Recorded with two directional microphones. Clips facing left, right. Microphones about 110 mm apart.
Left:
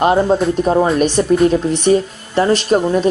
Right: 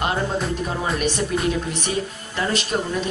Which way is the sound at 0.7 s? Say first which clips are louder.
Left 12 dB; 45° left (ahead or behind).